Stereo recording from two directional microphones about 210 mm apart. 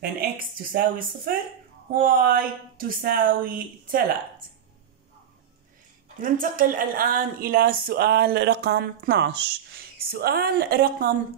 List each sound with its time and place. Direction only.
0.7 s a woman's voice: 40° right (ahead or behind)
6.2 s a woman's voice: 40° right (ahead or behind)